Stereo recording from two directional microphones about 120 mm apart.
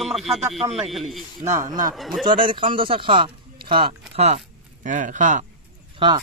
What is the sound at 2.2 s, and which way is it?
Speech, 45° right (ahead or behind).